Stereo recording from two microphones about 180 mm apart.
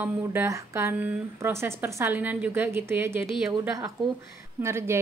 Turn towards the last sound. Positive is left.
turn(degrees=-15)  # may be behind; listen again after turning